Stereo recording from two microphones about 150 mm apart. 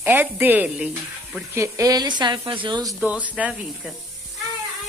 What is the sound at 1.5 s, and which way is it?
Speech, 20° right (ahead or behind).